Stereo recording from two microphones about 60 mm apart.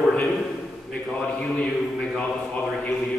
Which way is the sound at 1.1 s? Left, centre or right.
Centre.